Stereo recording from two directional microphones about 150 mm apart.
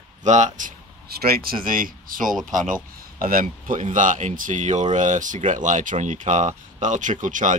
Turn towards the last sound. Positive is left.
turn(degrees=-55)  # may be behind; listen again after turning